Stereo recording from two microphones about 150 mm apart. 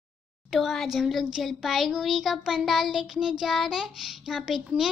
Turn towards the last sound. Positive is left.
turn(degrees=-5)  # may be behind; listen again after turning